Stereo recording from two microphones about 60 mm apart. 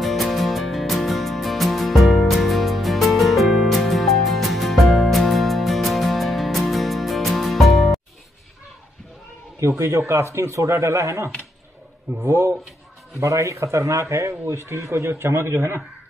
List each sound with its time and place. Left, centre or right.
0.0 s music: centre
9.6 s a man's voice: right
12.3 s a man's voice: right